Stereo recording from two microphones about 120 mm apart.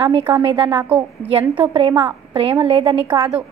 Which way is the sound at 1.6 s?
45° right (ahead or behind).